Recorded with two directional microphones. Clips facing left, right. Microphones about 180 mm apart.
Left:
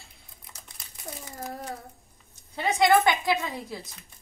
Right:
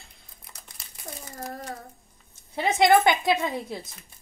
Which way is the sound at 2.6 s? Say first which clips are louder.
Right 2 dB; 25° right (ahead or behind).